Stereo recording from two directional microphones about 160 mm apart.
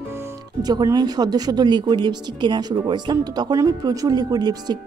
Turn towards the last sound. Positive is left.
turn(degrees=-25)  # may be behind; listen again after turning